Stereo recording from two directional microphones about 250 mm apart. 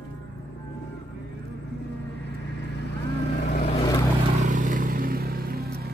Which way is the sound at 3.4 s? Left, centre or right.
Left.